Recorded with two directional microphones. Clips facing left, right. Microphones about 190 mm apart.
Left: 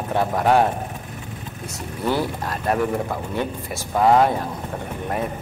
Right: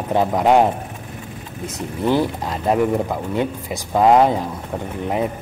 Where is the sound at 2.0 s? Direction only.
20° right (ahead or behind).